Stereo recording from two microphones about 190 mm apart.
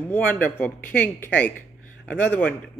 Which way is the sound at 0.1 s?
10° left (ahead or behind).